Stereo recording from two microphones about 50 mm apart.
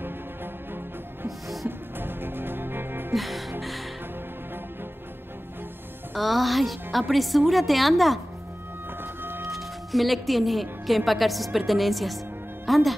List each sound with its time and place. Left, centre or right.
2.0 s music: right
3.2 s music: centre
6.1 s a woman's voice: centre
9.2 s music: right
9.5 s speech: centre